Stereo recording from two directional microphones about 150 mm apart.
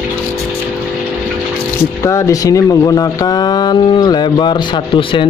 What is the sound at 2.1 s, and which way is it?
Speech, 20° left (ahead or behind).